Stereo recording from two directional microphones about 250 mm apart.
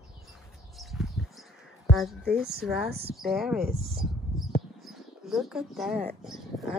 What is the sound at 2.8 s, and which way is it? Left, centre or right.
Speech, right.